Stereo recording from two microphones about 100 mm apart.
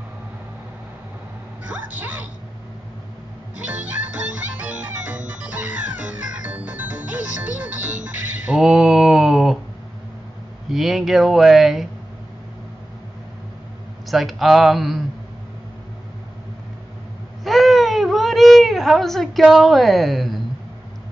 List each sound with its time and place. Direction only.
1.7 s a sound: 15° right (ahead or behind)
3.5 s music: 15° right (ahead or behind)
10.7 s speech: centre (ahead or behind)
14.0 s speech: centre (ahead or behind)
17.4 s baby cry: centre (ahead or behind)